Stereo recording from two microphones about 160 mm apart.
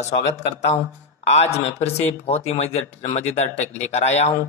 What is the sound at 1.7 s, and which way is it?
A man's voice, 40° left (ahead or behind).